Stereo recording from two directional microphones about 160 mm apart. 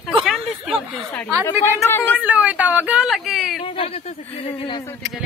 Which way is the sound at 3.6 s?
35° left (ahead or behind).